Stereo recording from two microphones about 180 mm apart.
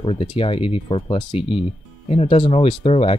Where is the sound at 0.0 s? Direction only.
30° left (ahead or behind).